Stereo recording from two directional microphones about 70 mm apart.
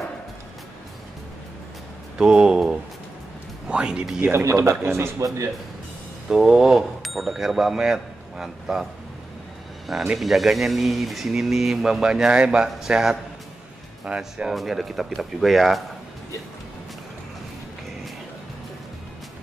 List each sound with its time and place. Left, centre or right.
2.1 s speech: centre
4.3 s speech: right
6.2 s speech: centre
9.8 s speech: centre
14.5 s speech: centre